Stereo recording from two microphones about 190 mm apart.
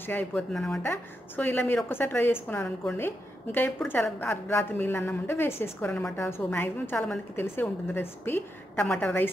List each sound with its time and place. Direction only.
0.0 s a woman's voice: 10° left (ahead or behind)